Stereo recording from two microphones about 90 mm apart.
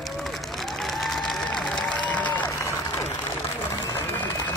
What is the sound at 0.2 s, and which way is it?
Applause, centre (ahead or behind).